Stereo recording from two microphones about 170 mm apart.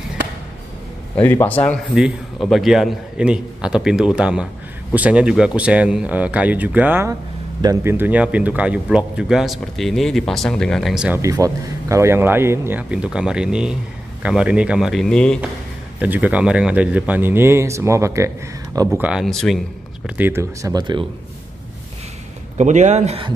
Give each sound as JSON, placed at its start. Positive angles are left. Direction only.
{"t": 1.2, "sound": "speech", "side_deg": 10}
{"t": 2.4, "sound": "speech", "side_deg": 0}
{"t": 11.1, "sound": "speech", "side_deg": -20}
{"t": 16.0, "sound": "speech", "side_deg": -10}
{"t": 18.9, "sound": "speech", "side_deg": -5}
{"t": 20.2, "sound": "speech", "side_deg": -15}
{"t": 20.7, "sound": "speech", "side_deg": -25}
{"t": 22.6, "sound": "speech", "side_deg": -45}